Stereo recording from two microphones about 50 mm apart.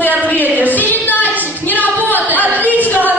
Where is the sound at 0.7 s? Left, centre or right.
Left.